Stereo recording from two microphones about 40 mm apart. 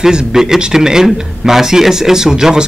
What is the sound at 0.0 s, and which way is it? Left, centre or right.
A man's voice, centre.